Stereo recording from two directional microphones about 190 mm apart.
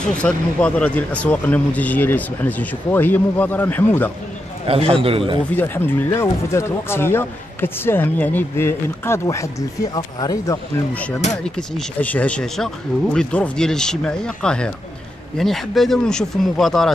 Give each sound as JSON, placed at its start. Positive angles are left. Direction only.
{"t": 0.2, "sound": "speech", "side_deg": 5}
{"t": 4.6, "sound": "speech", "side_deg": -30}
{"t": 5.5, "sound": "speech", "side_deg": 10}
{"t": 11.5, "sound": "speech", "side_deg": 5}